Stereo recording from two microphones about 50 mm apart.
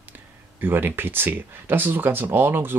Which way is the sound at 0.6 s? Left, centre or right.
Right.